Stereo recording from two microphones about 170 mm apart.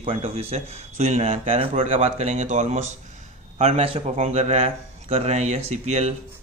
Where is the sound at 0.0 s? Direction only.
35° right (ahead or behind).